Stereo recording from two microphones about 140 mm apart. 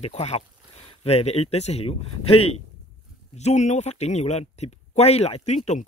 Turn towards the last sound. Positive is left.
turn(degrees=50)  # may be behind; listen again after turning